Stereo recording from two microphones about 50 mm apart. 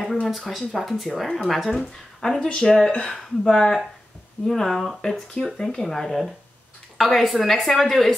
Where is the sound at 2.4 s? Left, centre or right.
Left.